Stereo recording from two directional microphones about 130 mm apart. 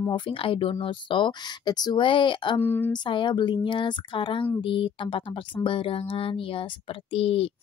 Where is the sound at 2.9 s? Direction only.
40° left (ahead or behind).